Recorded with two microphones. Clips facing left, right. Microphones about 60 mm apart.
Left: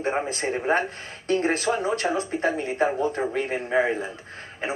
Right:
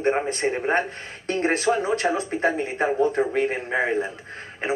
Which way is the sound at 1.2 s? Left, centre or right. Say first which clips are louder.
Right 1 dB; right.